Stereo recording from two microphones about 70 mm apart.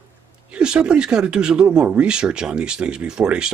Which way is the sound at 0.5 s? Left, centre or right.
Centre.